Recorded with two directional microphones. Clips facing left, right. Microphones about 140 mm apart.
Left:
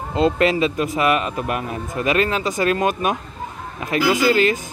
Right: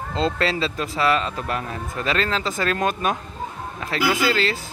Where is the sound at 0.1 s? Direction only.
15° left (ahead or behind).